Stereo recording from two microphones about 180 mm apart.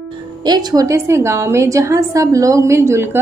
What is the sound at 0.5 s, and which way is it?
A woman's voice, 25° right (ahead or behind).